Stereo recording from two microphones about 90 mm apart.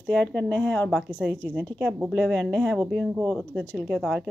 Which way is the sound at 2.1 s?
10° left (ahead or behind).